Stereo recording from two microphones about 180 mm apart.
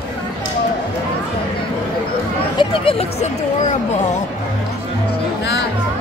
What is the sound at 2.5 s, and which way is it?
Speech, 30° left (ahead or behind).